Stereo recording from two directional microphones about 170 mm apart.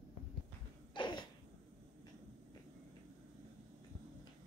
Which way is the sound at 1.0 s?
25° left (ahead or behind).